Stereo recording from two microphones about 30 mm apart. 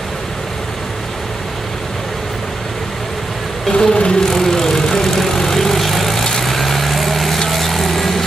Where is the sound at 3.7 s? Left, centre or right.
Left.